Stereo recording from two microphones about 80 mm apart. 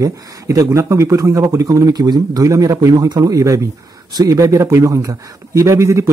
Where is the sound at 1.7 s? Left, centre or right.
Right.